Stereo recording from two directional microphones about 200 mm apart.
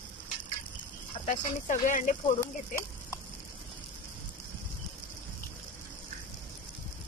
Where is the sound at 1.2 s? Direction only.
40° left (ahead or behind).